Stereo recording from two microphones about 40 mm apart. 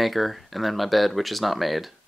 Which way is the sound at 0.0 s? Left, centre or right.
Centre.